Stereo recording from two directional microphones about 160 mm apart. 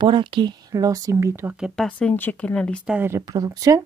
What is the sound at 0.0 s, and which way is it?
Speech, 30° right (ahead or behind).